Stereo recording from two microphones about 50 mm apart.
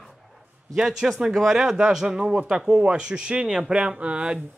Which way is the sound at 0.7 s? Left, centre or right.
Centre.